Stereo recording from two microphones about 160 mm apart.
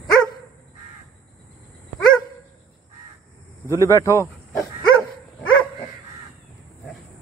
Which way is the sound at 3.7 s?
20° left (ahead or behind).